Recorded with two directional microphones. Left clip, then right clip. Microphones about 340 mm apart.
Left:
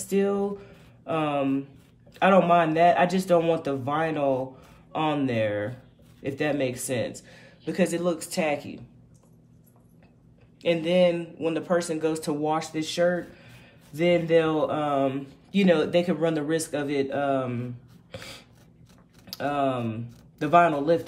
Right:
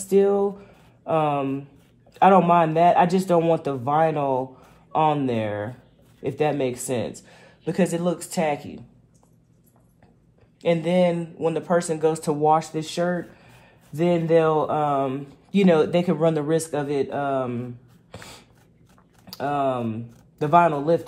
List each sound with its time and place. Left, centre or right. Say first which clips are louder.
0.0 s speech: right 6 dB; centre
10.6 s speech: right 1 dB; centre
18.1 s a sound: left 1 dB; centre
19.2 s speech: right 2 dB; centre